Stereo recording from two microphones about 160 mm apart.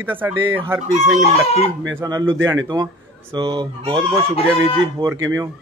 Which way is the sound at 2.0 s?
20° right (ahead or behind).